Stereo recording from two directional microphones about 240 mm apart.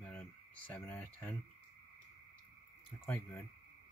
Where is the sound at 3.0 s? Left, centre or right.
Centre.